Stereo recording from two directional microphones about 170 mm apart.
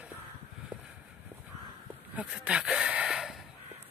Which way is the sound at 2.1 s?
5° right (ahead or behind).